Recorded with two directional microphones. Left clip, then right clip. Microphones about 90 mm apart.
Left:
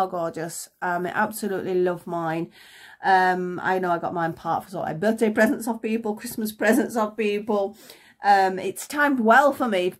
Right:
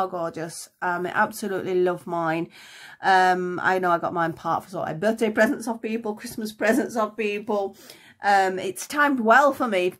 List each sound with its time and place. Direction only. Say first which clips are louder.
0.1 s a woman's voice: left 1 dB; 5° right (ahead or behind)
0.7 s speech: right 1 dB; 15° right (ahead or behind); by 7.6 s 5° left (ahead or behind)
8.2 s speech: left 1 dB; 30° right (ahead or behind)